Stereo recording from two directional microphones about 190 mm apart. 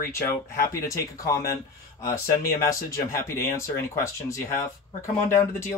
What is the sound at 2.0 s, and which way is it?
Speech, 15° left (ahead or behind).